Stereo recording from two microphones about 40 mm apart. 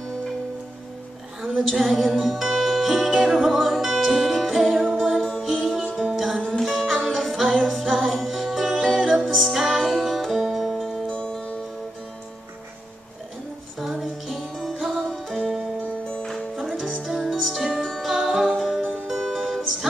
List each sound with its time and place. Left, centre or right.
1.6 s music: centre
7.2 s a capella: centre
7.8 s music: centre
11.1 s music: left
13.7 s music: centre
15.8 s music: left
16.3 s music: centre
16.6 s music: centre